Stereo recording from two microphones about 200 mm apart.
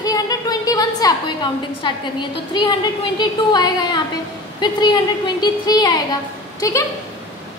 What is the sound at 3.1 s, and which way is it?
A woman's voice, 20° left (ahead or behind).